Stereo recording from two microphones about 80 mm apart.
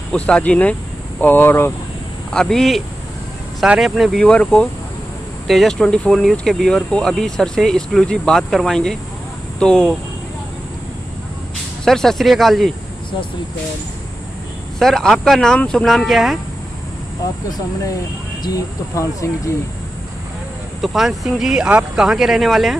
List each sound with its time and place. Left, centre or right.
0.1 s speech: centre
2.3 s speech: centre
3.8 s speech: centre
4.2 s speech: centre
11.8 s speech: centre
14.8 s speech: centre
18.4 s speech: left
20.8 s speech: centre